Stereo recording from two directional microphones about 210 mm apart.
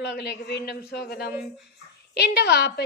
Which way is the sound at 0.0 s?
55° left (ahead or behind).